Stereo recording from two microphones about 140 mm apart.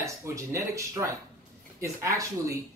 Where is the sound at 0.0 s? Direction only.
20° right (ahead or behind).